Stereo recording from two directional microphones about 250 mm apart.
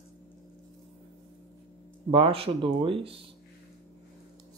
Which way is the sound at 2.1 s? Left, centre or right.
Right.